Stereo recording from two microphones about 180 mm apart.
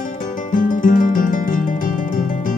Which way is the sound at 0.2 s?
50° left (ahead or behind).